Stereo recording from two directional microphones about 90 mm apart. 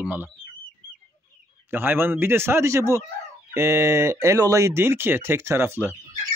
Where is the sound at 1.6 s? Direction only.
25° right (ahead or behind).